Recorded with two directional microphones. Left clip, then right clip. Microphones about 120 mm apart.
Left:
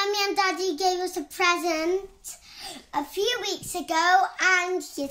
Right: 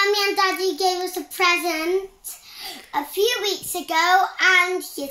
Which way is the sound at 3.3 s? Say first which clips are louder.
Right 4 dB; 55° left (ahead or behind).